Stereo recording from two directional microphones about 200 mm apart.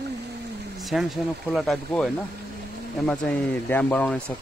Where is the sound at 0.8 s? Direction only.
Centre (ahead or behind).